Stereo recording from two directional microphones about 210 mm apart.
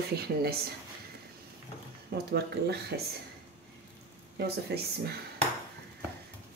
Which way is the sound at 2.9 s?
50° right (ahead or behind).